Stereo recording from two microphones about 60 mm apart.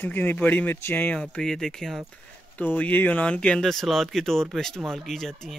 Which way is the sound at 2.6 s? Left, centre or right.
Left.